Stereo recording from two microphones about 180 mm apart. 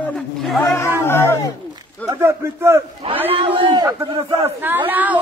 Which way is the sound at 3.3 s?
30° right (ahead or behind).